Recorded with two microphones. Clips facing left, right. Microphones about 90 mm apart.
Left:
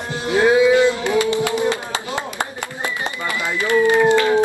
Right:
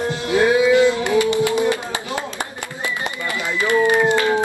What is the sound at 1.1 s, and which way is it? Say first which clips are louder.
Music: right 1 dB; 20° right (ahead or behind).